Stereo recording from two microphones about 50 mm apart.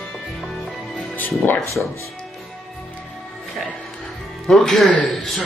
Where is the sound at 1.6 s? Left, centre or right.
Right.